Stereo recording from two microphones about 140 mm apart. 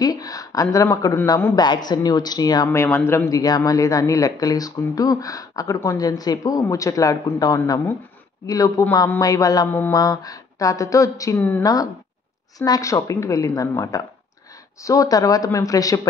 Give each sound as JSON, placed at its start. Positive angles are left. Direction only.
{"t": 0.0, "sound": "speech", "side_deg": 25}